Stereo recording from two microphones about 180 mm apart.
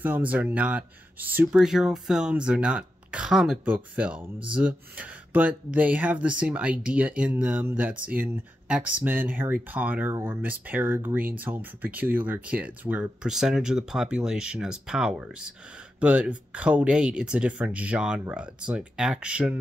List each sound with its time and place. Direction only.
0.0 s speech: 10° right (ahead or behind)